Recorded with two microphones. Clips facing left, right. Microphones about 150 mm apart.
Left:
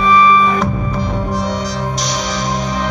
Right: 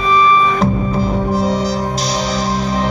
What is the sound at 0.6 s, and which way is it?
Music, 30° right (ahead or behind).